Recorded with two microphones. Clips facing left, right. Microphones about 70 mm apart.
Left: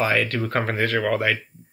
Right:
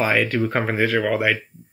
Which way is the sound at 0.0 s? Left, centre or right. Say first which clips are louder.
Right 2 dB; centre.